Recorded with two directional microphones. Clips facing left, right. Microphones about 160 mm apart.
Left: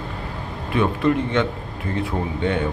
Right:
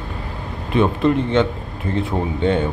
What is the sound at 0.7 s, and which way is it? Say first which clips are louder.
Speech: right 3 dB; 25° right (ahead or behind).